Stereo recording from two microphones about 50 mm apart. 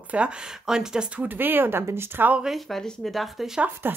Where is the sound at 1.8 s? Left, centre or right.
Right.